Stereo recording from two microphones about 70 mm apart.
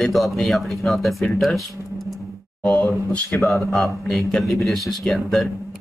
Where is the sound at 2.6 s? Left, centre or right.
Left.